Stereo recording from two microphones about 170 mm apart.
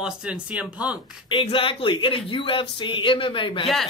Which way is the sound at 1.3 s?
30° left (ahead or behind).